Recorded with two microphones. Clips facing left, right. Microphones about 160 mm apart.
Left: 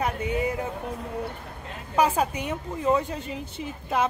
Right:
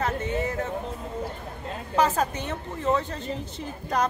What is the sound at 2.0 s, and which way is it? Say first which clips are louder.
A woman's voice: left 1 dB; 10° left (ahead or behind).